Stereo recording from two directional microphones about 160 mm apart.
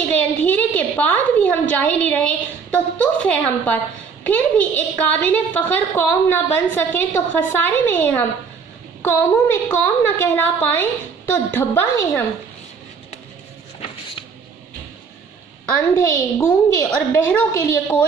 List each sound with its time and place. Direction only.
0.1 s a woman's voice: 10° left (ahead or behind)
15.6 s a woman's voice: 15° left (ahead or behind)